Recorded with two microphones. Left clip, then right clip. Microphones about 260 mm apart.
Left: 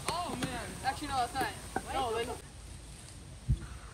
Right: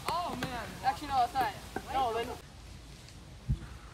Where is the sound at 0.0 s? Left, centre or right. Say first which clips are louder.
Right 2 dB; centre.